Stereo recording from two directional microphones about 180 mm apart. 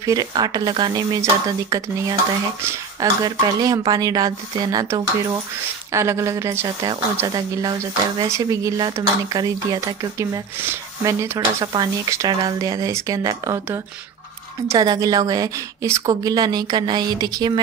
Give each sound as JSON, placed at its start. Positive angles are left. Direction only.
{"t": 0.0, "sound": "speech", "side_deg": -20}
{"t": 2.6, "sound": "a woman's voice", "side_deg": -20}